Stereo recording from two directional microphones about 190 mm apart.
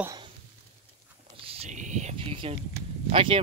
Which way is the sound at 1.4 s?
30° right (ahead or behind).